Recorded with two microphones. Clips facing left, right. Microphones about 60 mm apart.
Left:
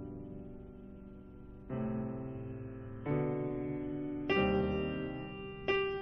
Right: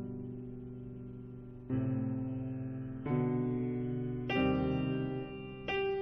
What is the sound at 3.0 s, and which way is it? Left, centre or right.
Music, centre.